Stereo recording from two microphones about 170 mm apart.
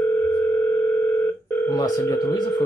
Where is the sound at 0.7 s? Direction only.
Centre (ahead or behind).